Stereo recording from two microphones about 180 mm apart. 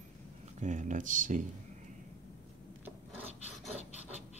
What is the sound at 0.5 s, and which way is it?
Speech, 45° right (ahead or behind).